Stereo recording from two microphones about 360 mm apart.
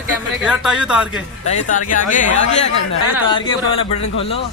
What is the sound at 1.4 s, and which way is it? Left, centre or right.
Speech, centre.